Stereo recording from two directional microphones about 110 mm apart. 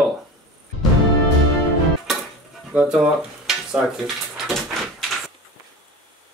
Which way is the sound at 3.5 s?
5° right (ahead or behind).